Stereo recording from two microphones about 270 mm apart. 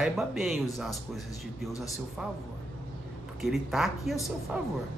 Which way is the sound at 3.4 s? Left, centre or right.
Centre.